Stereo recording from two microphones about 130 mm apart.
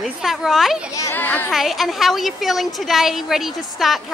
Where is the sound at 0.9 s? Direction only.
20° left (ahead or behind).